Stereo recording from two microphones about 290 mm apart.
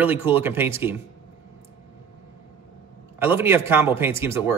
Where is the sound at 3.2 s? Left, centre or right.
Centre.